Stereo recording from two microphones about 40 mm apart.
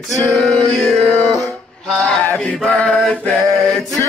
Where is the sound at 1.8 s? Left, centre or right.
Centre.